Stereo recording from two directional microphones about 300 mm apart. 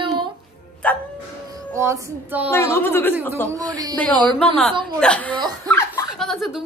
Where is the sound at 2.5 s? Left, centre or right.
Centre.